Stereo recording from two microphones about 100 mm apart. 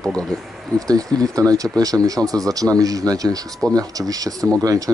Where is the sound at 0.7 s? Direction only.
35° right (ahead or behind).